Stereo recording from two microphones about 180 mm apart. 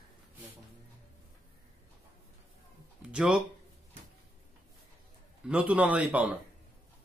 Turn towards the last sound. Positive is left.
turn(degrees=-5)  # may be behind; listen again after turning